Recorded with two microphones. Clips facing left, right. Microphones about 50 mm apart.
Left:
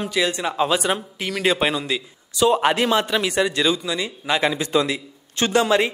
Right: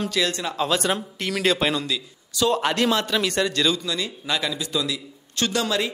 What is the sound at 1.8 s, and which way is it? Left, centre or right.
A man's voice, left.